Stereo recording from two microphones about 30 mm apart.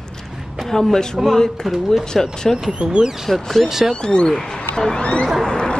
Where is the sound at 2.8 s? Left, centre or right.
Right.